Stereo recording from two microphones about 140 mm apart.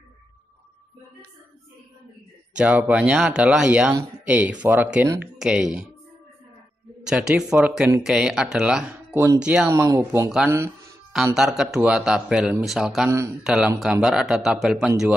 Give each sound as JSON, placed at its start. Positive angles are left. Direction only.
{"t": 2.5, "sound": "a man's voice", "side_deg": -5}
{"t": 7.1, "sound": "a man's voice", "side_deg": -5}
{"t": 9.7, "sound": "speech", "side_deg": -20}
{"t": 11.3, "sound": "a man's voice", "side_deg": -5}